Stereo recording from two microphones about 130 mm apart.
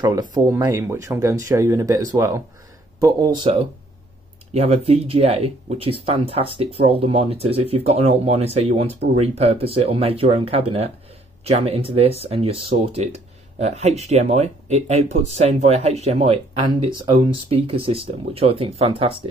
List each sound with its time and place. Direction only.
0.0 s speech: 30° right (ahead or behind)